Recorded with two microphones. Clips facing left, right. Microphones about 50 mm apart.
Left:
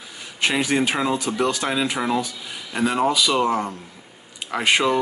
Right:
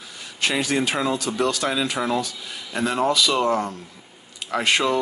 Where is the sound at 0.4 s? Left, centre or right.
Centre.